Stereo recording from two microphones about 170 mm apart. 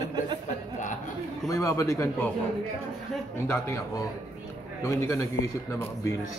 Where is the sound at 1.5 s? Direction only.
20° left (ahead or behind).